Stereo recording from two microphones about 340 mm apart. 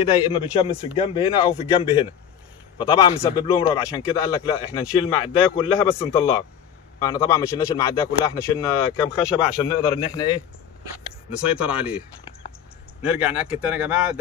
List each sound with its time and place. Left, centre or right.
0.0 s a man's voice: centre
11.3 s speech: centre
13.0 s speech: centre